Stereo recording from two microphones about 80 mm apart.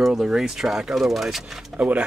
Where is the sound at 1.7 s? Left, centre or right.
Centre.